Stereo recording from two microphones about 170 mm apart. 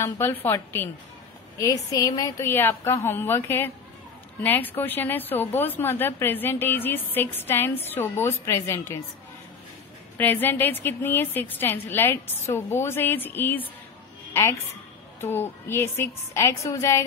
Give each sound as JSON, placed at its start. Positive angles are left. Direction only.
{"t": 0.0, "sound": "a woman's voice", "side_deg": 15}
{"t": 10.1, "sound": "a woman's voice", "side_deg": 10}